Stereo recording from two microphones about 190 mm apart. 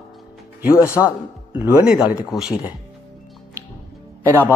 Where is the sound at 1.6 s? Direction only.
5° right (ahead or behind).